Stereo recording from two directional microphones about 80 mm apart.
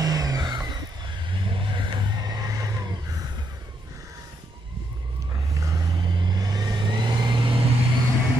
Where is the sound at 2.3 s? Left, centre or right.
Right.